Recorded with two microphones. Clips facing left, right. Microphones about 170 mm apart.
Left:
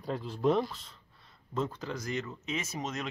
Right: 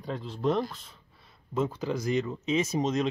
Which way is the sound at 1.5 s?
10° right (ahead or behind).